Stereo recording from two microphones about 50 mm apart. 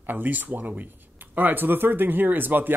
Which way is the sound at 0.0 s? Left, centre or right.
Right.